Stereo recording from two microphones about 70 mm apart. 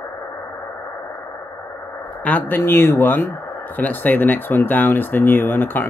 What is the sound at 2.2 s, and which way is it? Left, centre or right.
Speech, left.